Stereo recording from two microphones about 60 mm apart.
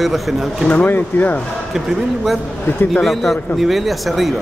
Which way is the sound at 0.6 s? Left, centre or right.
Left.